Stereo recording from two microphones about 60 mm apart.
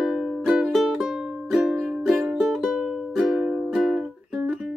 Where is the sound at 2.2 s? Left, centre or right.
Centre.